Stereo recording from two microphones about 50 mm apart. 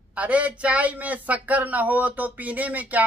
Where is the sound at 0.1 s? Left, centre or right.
Right.